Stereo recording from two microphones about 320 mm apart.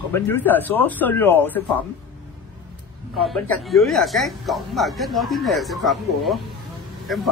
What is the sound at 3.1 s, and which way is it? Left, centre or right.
A man's voice, centre.